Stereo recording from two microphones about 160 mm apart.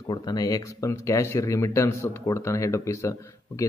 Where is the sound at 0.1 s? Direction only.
25° left (ahead or behind).